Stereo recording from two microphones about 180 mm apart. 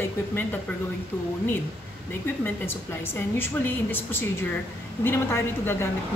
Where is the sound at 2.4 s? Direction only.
10° left (ahead or behind).